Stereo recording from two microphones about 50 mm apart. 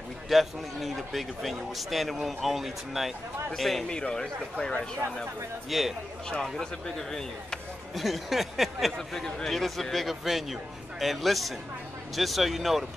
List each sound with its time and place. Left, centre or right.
0.3 s a man's voice: centre
3.8 s speech: centre
5.7 s a man's voice: centre
6.6 s speech: centre
7.9 s a man's voice: centre
8.9 s a man's voice: centre